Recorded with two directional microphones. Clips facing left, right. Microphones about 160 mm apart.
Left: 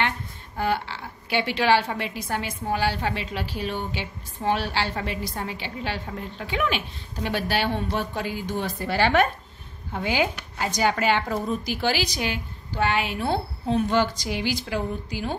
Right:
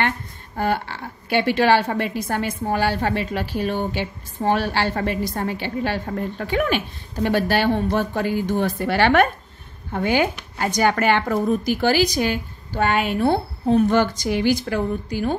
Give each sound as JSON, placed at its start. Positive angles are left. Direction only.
{"t": 0.6, "sound": "a woman's voice", "side_deg": -50}